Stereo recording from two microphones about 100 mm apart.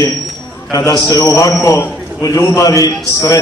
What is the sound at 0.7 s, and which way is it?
A man's voice, 35° left (ahead or behind).